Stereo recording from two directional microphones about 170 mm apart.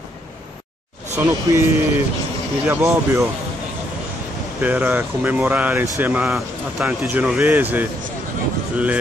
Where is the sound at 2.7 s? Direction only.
15° right (ahead or behind).